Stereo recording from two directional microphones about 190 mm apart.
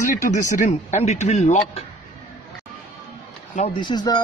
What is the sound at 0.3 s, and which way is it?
A man's voice, 40° left (ahead or behind).